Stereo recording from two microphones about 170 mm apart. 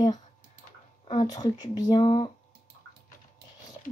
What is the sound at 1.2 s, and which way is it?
Speech, 20° left (ahead or behind).